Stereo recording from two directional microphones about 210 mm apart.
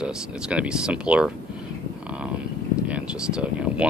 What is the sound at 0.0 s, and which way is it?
Speech, 5° right (ahead or behind).